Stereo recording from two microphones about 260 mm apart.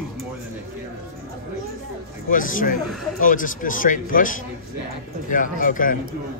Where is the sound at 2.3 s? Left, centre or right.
Left.